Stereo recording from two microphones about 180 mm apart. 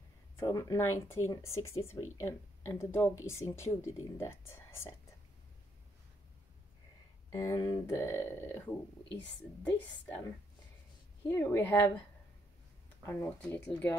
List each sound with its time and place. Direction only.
0.4 s speech: 20° left (ahead or behind)
7.2 s speech: 20° left (ahead or behind)
11.2 s speech: 10° left (ahead or behind)
13.0 s speech: 15° left (ahead or behind)